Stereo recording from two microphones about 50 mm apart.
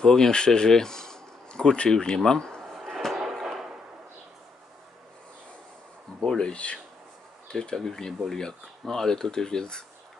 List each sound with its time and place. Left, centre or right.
0.0 s speech: centre
2.6 s a sound: centre
6.2 s speech: centre